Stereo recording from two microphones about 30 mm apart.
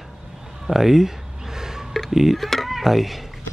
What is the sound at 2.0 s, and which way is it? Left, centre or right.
Speech, centre.